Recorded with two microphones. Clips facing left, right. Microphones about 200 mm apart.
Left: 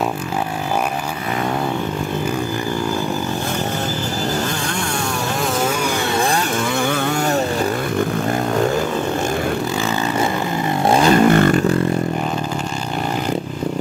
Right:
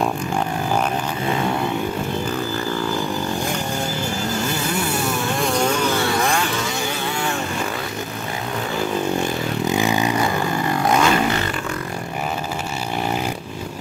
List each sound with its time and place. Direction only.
6.1 s vehicle: 30° left (ahead or behind)
6.6 s vehicle: 55° left (ahead or behind)
9.7 s vehicle: 15° right (ahead or behind)
10.9 s a sound: 30° left (ahead or behind)
11.2 s vehicle: 50° left (ahead or behind)